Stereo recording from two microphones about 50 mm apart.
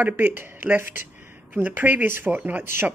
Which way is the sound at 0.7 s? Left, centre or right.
Right.